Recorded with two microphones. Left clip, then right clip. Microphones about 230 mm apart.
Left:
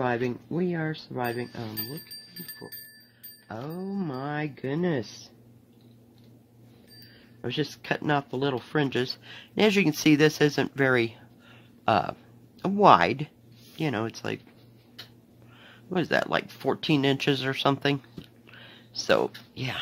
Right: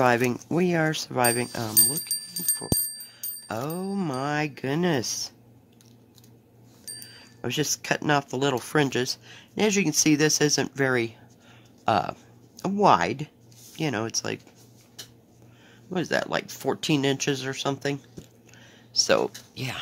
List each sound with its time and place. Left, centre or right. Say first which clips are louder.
0.0 s speech: right 6 dB; right
3.4 s speech: right 5 dB; right
7.4 s speech: right 3 dB; centre
15.9 s speech: left 1 dB; centre
18.5 s a sound: left 3 dB; centre
18.9 s speech: right 2 dB; centre